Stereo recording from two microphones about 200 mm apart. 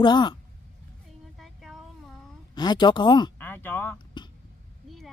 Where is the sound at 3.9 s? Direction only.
20° left (ahead or behind).